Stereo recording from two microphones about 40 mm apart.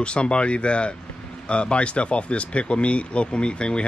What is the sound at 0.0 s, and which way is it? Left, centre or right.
A man's voice, left.